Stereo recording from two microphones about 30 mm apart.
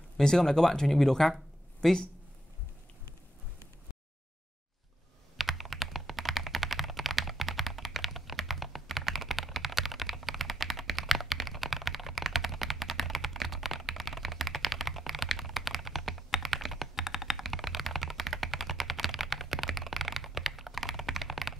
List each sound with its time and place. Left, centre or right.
0.2 s speech: centre
5.4 s computer keyboard: centre